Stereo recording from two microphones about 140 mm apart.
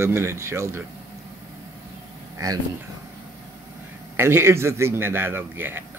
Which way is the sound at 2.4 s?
25° right (ahead or behind).